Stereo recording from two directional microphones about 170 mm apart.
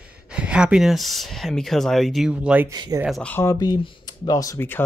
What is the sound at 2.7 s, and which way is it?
Speech, 25° right (ahead or behind).